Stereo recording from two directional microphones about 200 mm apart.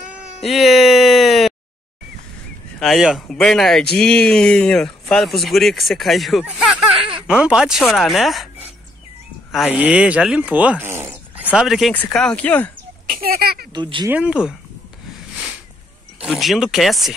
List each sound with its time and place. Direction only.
0.1 s cat: centre (ahead or behind)
2.8 s speech: centre (ahead or behind)
9.5 s speech: 5° right (ahead or behind)
11.5 s speech: centre (ahead or behind)
13.1 s speech: 50° right (ahead or behind)
13.7 s speech: 25° right (ahead or behind)
14.0 s speech: 5° right (ahead or behind)
16.2 s speech: centre (ahead or behind)